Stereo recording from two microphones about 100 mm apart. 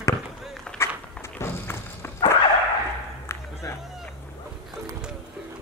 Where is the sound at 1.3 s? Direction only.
25° left (ahead or behind).